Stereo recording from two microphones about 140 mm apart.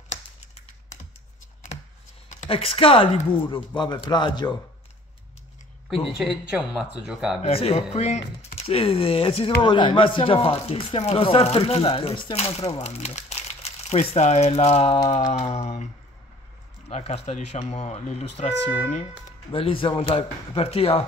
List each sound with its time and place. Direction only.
2.4 s speech: 40° left (ahead or behind)
6.1 s speech: centre (ahead or behind)
7.4 s speech: 45° left (ahead or behind)
16.9 s speech: 45° left (ahead or behind)
19.5 s speech: 40° left (ahead or behind)